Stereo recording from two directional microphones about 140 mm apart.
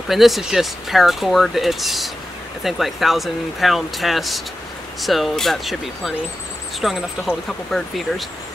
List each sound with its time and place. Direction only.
0.1 s speech: centre (ahead or behind)